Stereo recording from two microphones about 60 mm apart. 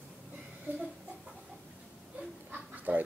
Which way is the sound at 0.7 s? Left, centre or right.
Right.